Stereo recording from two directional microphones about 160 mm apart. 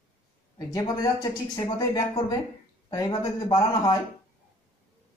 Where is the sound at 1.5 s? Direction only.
25° left (ahead or behind).